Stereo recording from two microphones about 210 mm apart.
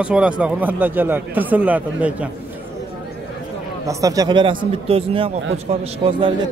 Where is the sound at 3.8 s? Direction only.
15° right (ahead or behind).